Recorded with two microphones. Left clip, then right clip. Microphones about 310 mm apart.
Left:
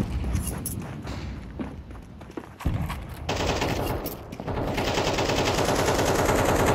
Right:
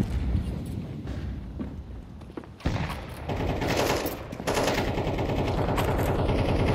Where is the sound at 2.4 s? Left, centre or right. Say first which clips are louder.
Left 3 dB; centre.